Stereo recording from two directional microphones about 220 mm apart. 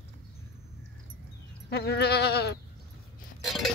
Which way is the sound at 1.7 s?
45° left (ahead or behind).